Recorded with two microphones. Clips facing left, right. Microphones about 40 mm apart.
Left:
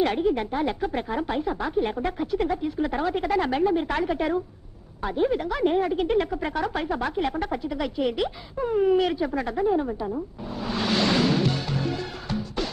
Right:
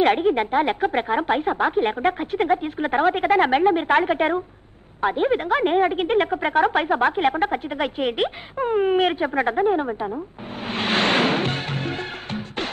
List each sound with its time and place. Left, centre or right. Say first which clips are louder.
0.0 s a woman's voice: right 5 dB; right
10.6 s music: right 3 dB; right